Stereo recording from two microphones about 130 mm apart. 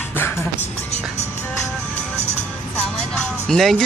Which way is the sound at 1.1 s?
60° left (ahead or behind).